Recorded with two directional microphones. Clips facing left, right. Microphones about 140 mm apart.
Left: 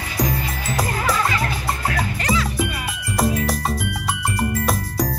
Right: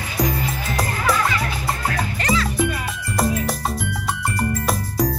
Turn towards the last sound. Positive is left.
turn(degrees=0)  # may be behind; listen again after turning